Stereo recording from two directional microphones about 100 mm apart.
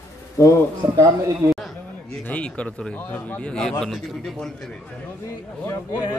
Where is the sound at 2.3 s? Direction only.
10° left (ahead or behind).